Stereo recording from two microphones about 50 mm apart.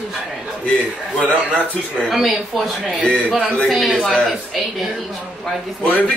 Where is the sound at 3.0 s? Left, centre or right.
Left.